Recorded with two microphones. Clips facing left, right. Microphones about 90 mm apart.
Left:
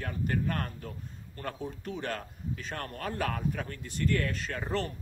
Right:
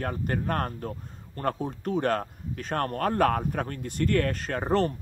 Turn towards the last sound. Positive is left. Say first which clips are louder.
# right 8 dB
turn(degrees=-45)  # may be behind; listen again after turning